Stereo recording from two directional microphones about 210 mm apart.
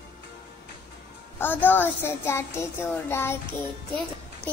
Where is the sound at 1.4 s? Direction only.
10° left (ahead or behind).